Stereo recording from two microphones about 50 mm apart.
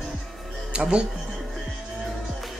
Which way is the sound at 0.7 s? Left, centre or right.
Right.